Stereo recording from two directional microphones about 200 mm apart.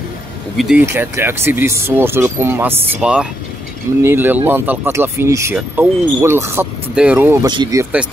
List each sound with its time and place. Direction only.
0.6 s speech: 5° right (ahead or behind)
7.4 s speech: 20° right (ahead or behind)